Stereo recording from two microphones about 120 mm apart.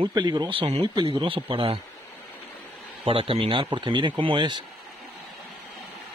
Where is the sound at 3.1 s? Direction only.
50° right (ahead or behind).